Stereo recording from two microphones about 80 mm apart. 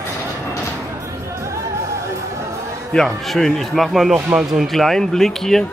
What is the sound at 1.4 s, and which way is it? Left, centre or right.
Music, right.